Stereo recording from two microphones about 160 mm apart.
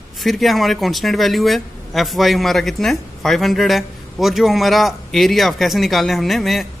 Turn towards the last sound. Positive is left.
turn(degrees=0)  # may be behind; listen again after turning